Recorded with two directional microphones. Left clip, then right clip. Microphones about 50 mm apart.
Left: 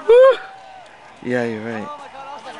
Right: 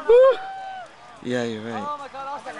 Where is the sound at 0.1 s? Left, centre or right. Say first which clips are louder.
Left 4 dB; left.